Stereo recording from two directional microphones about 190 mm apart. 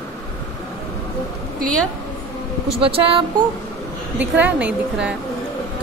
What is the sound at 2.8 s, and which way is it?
Speech, 30° right (ahead or behind).